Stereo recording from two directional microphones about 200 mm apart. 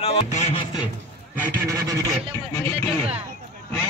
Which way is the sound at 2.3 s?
15° left (ahead or behind).